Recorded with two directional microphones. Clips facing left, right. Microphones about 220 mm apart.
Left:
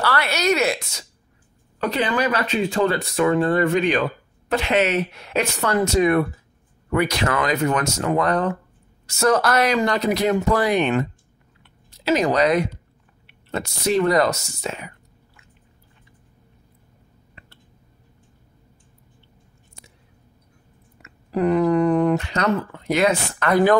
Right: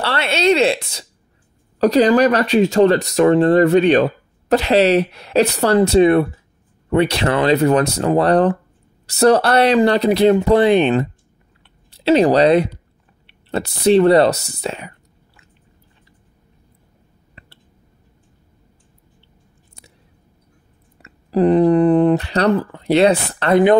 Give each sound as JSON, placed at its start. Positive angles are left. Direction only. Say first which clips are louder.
{"t": 0.0, "sound": "speech", "louder": "right 4 dB", "side_deg": -25}
{"t": 11.6, "sound": "chewing", "louder": "right 7 dB", "side_deg": -30}
{"t": 13.3, "sound": "speech", "louder": "right 5 dB", "side_deg": -35}
{"t": 21.0, "sound": "speech", "louder": "right 6 dB", "side_deg": -30}